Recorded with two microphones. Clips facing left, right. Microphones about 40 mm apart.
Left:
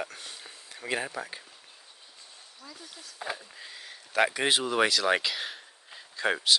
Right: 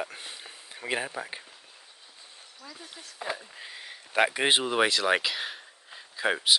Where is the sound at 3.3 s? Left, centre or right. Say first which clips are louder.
Right 2 dB; centre.